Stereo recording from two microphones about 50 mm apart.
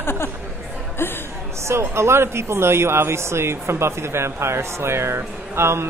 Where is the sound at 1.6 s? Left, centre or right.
Right.